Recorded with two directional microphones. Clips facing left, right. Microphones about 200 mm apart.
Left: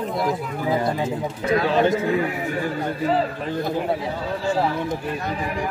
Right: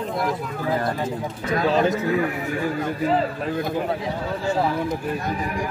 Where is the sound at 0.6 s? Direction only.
10° left (ahead or behind).